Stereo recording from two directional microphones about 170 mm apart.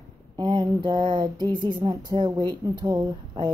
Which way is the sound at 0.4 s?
25° right (ahead or behind).